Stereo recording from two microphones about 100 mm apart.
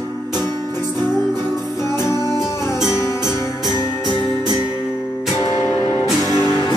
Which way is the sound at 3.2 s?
45° right (ahead or behind).